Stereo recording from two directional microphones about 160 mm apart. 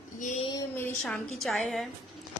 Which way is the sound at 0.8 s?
5° left (ahead or behind).